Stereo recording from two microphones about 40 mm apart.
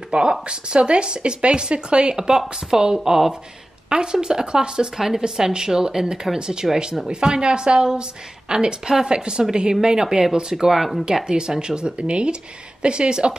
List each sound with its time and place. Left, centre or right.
0.1 s speech: right
2.1 s speech: centre
11.2 s speech: centre